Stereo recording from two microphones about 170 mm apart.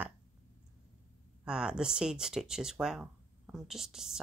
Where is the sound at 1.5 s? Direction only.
5° right (ahead or behind).